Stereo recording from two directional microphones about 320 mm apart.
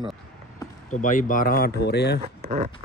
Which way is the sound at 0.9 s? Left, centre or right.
Left.